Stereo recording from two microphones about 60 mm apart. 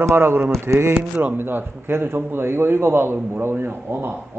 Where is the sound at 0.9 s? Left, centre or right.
Right.